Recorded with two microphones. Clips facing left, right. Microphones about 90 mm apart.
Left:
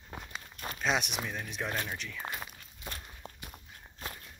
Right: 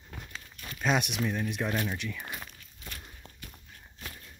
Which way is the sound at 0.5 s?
40° left (ahead or behind).